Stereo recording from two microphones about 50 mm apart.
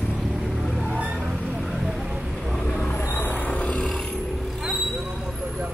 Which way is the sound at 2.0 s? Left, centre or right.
Centre.